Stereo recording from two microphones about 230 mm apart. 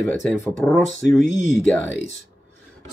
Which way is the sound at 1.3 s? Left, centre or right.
Left.